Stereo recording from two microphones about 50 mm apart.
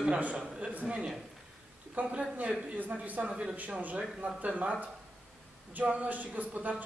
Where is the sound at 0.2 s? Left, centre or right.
Right.